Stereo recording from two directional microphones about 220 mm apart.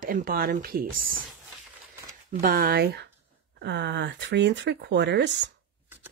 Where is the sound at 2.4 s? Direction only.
40° right (ahead or behind).